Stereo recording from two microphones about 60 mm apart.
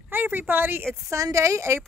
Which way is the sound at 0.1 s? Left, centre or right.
Right.